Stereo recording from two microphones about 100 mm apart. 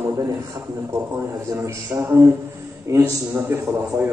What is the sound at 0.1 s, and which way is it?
A man's voice, 35° right (ahead or behind).